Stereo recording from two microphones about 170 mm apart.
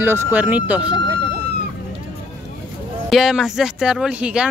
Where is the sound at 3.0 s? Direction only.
Centre (ahead or behind).